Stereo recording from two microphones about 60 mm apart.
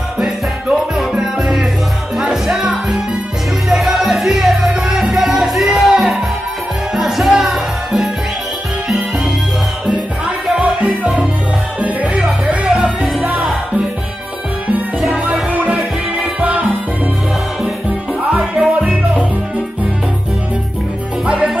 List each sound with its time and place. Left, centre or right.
0.2 s music: centre
12.2 s music: centre
15.5 s music: right
18.5 s music: right